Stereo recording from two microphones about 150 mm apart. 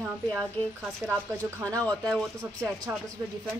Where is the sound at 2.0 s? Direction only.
20° right (ahead or behind).